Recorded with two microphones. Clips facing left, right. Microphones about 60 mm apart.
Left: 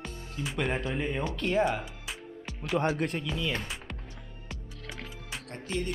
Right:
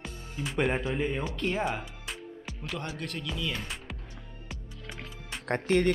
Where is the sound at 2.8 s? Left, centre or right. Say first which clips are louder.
Left 12 dB; left.